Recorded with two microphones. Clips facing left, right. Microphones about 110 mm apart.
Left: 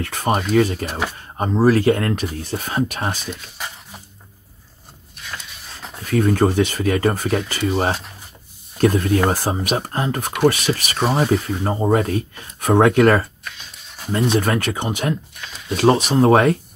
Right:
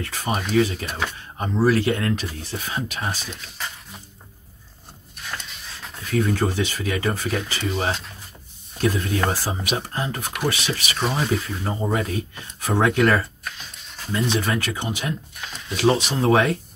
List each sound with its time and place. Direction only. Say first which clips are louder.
0.0 s speech: left 6 dB; 50° left (ahead or behind)
6.0 s speech: left 5 dB; 45° left (ahead or behind)
11.4 s speech: left 6 dB; 40° left (ahead or behind)